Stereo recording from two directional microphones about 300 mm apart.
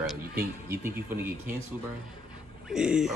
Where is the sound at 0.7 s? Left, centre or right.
Centre.